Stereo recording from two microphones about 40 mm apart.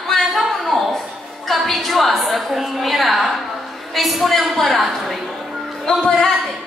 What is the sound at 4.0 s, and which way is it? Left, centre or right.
A woman's voice, centre.